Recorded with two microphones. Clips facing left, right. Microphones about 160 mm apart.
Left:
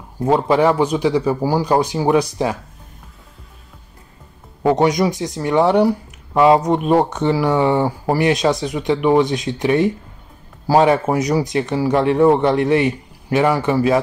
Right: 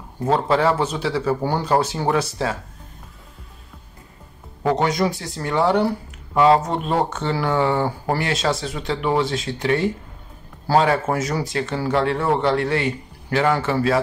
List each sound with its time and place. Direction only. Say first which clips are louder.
0.2 s speech: left 4 dB; 15° left (ahead or behind)
4.6 s speech: left 4 dB; 20° left (ahead or behind)